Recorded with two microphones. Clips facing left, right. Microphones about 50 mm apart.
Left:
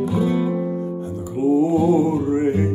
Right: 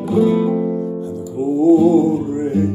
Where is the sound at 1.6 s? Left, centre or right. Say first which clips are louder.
Right 10 dB; left.